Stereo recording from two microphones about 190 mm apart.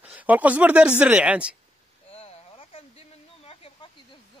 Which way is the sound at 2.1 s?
30° left (ahead or behind).